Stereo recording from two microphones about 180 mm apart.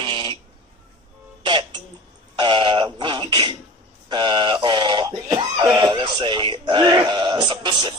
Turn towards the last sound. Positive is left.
turn(degrees=-25)  # may be behind; listen again after turning